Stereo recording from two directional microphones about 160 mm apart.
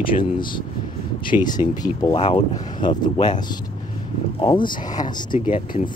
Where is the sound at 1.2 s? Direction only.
30° left (ahead or behind).